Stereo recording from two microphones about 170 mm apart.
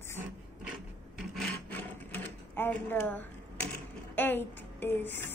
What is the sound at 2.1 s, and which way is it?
Speech, 10° left (ahead or behind).